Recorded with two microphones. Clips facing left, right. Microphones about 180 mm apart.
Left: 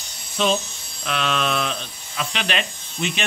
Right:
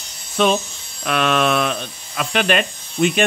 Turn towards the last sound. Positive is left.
turn(degrees=-50)  # may be behind; listen again after turning